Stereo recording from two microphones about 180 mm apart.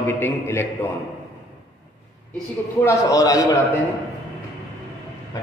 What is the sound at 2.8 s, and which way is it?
Speech, 20° left (ahead or behind).